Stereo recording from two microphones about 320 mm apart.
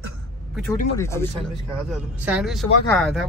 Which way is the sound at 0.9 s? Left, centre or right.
Centre.